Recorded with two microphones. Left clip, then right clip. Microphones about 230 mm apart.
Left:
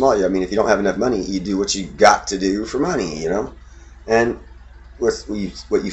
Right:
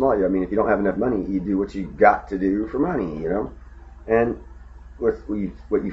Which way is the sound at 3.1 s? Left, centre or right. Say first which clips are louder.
Left 3 dB; centre.